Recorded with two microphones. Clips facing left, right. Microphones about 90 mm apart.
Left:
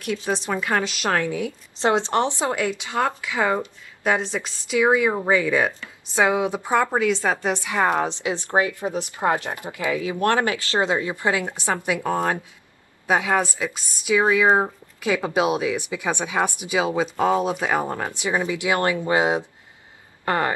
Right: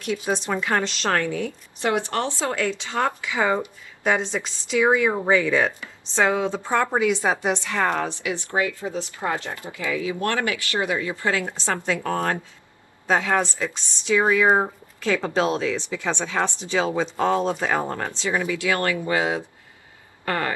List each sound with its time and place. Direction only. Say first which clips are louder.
0.3 s speech: even; centre (ahead or behind)
1.8 s speech: left 3 dB; 25° left (ahead or behind)
6.9 s a woman's voice: even; 5° right (ahead or behind)
7.5 s speech: left 2 dB; 10° left (ahead or behind)